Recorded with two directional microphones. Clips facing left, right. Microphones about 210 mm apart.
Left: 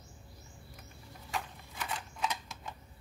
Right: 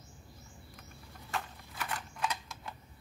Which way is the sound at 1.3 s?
Centre (ahead or behind).